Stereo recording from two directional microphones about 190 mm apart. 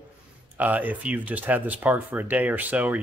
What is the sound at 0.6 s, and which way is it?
Speech, 10° right (ahead or behind).